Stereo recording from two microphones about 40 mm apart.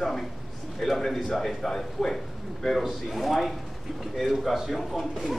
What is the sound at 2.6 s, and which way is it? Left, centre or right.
Speech, centre.